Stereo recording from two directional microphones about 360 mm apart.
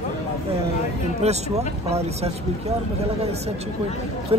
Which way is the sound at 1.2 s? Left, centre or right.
Centre.